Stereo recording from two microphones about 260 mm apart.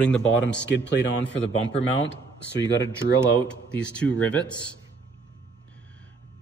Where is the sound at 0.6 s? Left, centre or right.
Left.